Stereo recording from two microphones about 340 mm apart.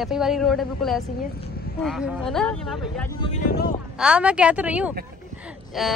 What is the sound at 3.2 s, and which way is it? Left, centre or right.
Speech, left.